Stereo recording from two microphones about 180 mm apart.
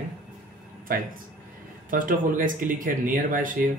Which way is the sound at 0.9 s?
50° right (ahead or behind).